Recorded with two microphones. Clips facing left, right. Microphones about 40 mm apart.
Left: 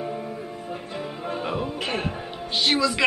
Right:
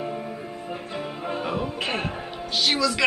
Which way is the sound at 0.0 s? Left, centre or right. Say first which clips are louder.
Even; centre.